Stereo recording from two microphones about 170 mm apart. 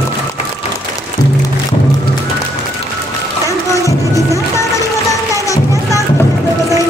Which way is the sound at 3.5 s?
20° left (ahead or behind).